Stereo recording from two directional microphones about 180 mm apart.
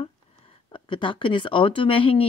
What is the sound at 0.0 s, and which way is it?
Speech, 30° left (ahead or behind).